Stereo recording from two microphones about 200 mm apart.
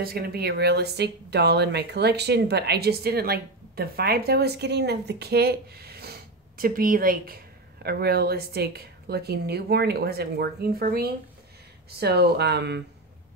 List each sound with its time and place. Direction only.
0.0 s speech: 50° right (ahead or behind)